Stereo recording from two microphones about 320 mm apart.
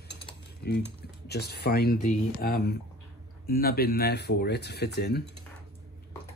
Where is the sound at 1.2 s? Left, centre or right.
Left.